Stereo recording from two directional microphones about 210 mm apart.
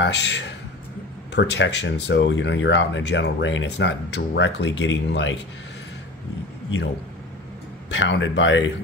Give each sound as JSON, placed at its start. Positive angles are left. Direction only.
{"t": 0.0, "sound": "speech", "side_deg": 55}
{"t": 7.9, "sound": "speech", "side_deg": 60}